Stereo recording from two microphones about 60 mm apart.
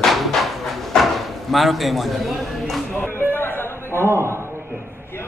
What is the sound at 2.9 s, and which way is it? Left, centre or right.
Speech, left.